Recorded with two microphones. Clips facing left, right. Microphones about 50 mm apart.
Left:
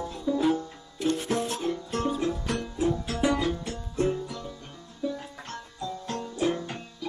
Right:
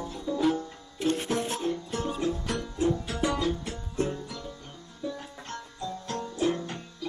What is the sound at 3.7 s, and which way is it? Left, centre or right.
Music, centre.